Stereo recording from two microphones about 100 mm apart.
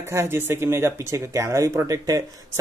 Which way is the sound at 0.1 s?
25° right (ahead or behind).